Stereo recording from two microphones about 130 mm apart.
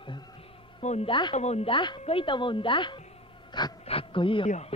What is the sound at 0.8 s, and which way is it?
Speech, 55° left (ahead or behind).